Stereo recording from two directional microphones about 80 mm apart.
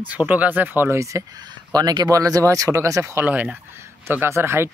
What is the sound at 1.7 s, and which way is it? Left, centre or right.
Speech, right.